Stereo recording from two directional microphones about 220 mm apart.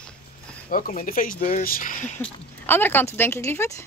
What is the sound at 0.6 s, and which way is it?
Speech, 40° left (ahead or behind).